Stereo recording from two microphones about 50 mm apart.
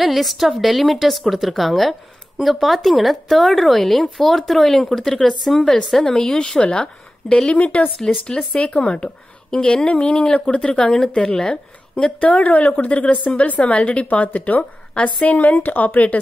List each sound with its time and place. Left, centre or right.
0.0 s a woman's voice: centre
7.5 s a woman's voice: left
8.3 s speech: centre
11.9 s a woman's voice: left